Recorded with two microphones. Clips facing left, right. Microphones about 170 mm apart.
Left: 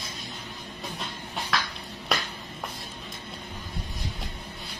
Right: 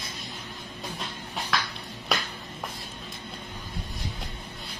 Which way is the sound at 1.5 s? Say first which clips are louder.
Even; centre (ahead or behind).